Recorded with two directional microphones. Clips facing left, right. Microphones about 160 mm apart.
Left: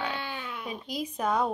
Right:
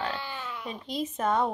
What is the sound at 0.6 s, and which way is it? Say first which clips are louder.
Speech: right 2 dB; 5° left (ahead or behind).